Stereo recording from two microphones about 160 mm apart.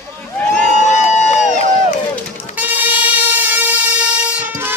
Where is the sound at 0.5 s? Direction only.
45° left (ahead or behind).